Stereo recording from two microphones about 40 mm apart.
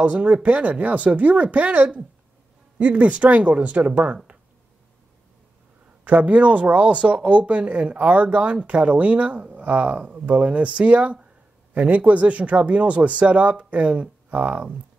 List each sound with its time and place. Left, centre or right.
0.0 s speech: right
6.0 s speech: right